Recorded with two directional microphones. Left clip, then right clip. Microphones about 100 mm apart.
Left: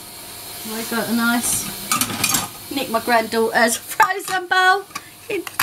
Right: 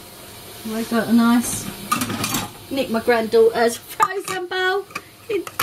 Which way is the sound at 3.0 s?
30° left (ahead or behind).